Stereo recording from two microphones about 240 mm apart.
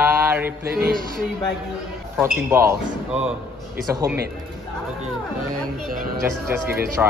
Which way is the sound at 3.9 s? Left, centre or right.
Centre.